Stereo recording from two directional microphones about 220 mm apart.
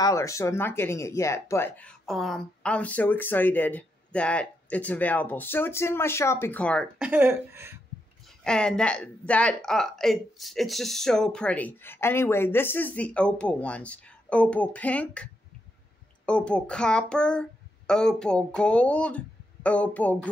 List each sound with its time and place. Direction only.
0.0 s speech: 15° left (ahead or behind)
7.1 s speech: 10° right (ahead or behind)
8.5 s speech: 5° left (ahead or behind)
16.3 s speech: 5° left (ahead or behind)